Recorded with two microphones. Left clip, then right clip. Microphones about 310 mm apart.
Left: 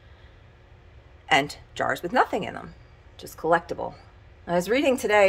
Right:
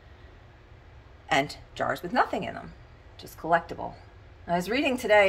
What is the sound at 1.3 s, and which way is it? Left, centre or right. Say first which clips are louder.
A woman's voice: left 4 dB; centre.